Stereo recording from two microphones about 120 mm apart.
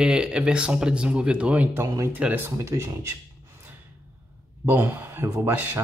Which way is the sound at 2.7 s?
30° right (ahead or behind).